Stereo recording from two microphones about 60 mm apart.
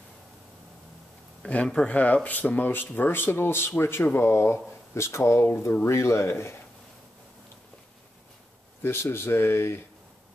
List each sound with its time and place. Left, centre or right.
1.4 s speech: left
8.8 s speech: left